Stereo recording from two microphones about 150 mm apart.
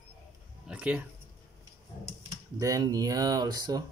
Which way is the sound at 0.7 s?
10° right (ahead or behind).